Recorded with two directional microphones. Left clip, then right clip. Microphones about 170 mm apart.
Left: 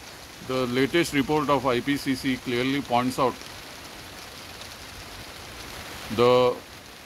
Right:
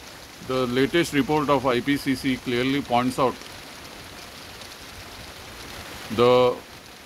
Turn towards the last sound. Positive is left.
turn(degrees=10)  # may be behind; listen again after turning